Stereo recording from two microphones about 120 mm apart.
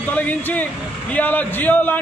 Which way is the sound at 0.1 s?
10° left (ahead or behind).